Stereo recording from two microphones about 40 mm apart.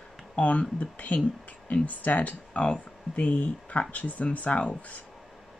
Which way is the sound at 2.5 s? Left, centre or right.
Left.